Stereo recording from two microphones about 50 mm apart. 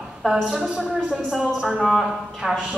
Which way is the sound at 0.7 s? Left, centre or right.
Right.